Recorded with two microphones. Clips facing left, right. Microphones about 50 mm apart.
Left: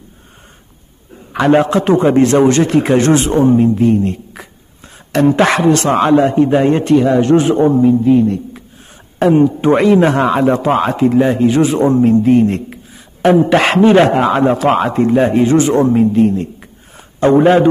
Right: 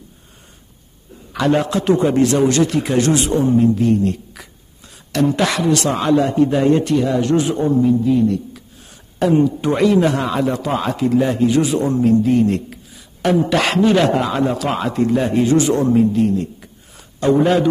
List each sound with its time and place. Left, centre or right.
1.3 s a man's voice: left